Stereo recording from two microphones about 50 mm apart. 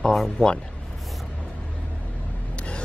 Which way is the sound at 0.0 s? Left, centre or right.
Centre.